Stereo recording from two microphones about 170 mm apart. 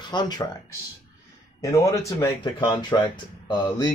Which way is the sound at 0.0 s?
25° left (ahead or behind).